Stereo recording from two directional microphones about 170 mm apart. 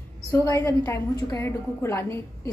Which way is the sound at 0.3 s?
15° left (ahead or behind).